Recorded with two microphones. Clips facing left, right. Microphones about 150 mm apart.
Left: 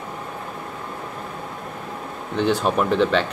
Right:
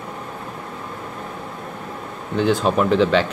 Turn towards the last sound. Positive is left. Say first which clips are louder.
# right 2 dB
turn(degrees=0)  # may be behind; listen again after turning